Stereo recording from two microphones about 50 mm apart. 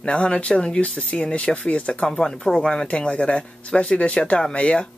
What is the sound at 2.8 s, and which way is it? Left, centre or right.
Speech, left.